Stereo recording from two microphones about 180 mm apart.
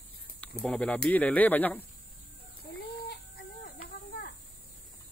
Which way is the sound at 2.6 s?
60° left (ahead or behind).